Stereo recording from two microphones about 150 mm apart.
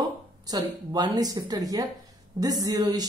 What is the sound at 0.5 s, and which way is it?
Speech, 25° right (ahead or behind).